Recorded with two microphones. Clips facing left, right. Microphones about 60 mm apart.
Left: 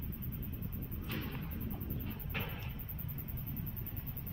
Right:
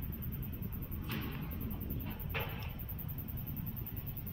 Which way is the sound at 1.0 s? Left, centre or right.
Centre.